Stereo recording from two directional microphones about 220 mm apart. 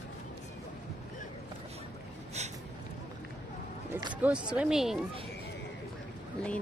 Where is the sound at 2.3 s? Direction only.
30° right (ahead or behind).